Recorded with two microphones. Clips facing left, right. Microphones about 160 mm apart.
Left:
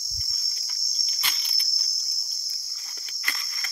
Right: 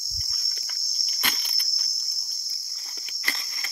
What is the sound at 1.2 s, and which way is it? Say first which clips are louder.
Insect: right 5 dB; 55° right (ahead or behind).